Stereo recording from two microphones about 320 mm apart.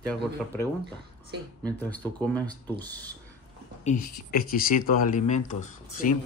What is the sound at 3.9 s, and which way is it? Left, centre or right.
Speech, left.